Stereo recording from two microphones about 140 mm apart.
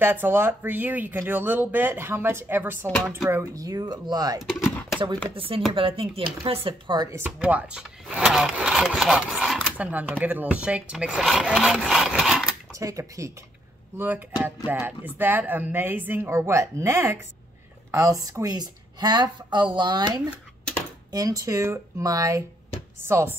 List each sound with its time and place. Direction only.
0.0 s speech: 15° right (ahead or behind)
4.4 s speech: centre (ahead or behind)
5.3 s speech: 40° right (ahead or behind)
7.0 s speech: 20° right (ahead or behind); by 12.5 s 5° right (ahead or behind)
12.7 s speech: 25° right (ahead or behind)
13.9 s speech: 10° right (ahead or behind)